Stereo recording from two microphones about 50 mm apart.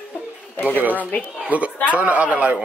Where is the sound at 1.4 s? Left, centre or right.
Right.